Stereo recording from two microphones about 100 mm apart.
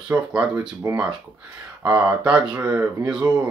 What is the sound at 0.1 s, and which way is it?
Speech, 10° right (ahead or behind).